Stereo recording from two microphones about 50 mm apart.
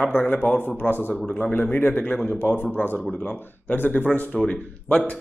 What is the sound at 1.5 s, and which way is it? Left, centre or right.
A man's voice, left.